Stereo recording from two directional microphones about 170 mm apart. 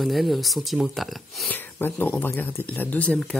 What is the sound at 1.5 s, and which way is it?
Speech, 10° left (ahead or behind).